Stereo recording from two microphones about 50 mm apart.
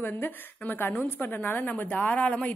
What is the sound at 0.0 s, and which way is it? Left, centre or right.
A woman's voice, left.